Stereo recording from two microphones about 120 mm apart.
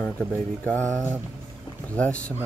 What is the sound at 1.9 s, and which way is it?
Speech, 10° left (ahead or behind).